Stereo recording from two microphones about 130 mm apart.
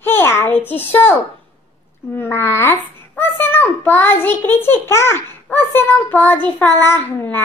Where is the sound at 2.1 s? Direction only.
20° left (ahead or behind).